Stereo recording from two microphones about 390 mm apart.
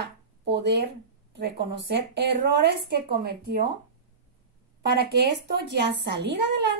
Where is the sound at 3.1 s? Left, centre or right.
Right.